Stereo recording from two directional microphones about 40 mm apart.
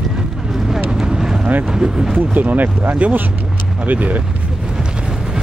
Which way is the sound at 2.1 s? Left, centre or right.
Right.